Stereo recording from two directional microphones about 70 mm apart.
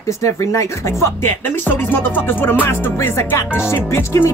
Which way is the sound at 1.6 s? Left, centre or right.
Left.